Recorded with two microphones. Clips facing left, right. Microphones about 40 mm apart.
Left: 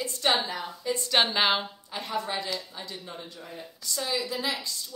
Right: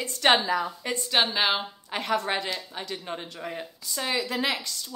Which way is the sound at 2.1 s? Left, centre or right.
Right.